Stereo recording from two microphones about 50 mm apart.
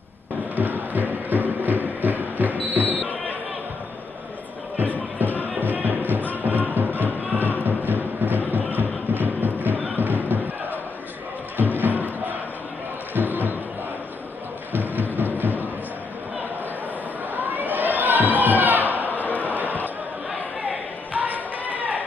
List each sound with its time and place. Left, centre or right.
0.6 s music: right
2.7 s basketball bounce: right
5.2 s music: right
6.1 s music: left
6.4 s music: right
11.8 s crowd: right
13.1 s music: right
14.7 s music: right
17.4 s a sound: right
19.2 s a sound: left
19.5 s a sound: right